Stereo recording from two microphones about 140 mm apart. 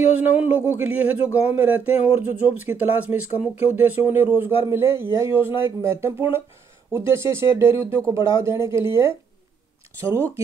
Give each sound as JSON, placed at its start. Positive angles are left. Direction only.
{"t": 0.2, "sound": "speech", "side_deg": -10}